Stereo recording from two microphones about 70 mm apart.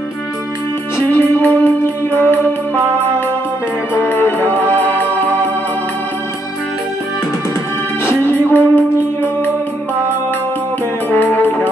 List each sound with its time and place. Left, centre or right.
0.9 s music: left
3.9 s music: left
8.0 s music: left
11.1 s music: left